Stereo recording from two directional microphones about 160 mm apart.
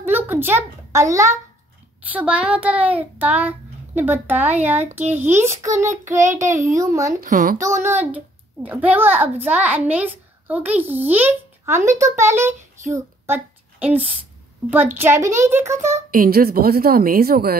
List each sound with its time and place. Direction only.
0.0 s a child's voice: 10° right (ahead or behind)
2.0 s a child's voice: 10° right (ahead or behind)
7.2 s speech: 55° right (ahead or behind)
7.5 s a child's voice: 20° right (ahead or behind)
16.1 s a woman's voice: 65° right (ahead or behind)